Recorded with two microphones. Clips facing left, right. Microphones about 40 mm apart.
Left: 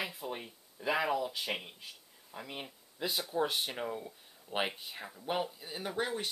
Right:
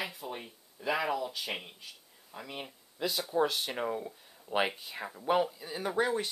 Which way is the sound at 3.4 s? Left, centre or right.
Centre.